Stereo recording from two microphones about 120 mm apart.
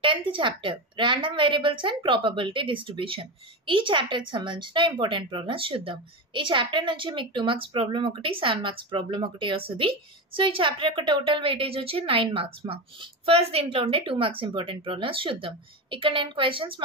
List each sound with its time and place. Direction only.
0.0 s a woman's voice: 45° right (ahead or behind)